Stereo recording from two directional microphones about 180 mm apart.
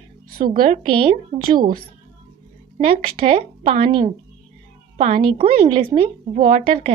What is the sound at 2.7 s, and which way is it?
A woman's voice, 30° right (ahead or behind).